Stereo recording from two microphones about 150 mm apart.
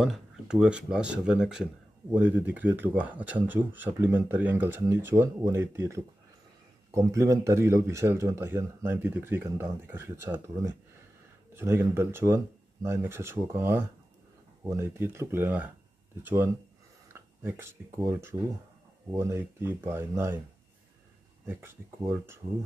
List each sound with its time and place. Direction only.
0.0 s speech: 5° right (ahead or behind)
21.5 s speech: 15° right (ahead or behind)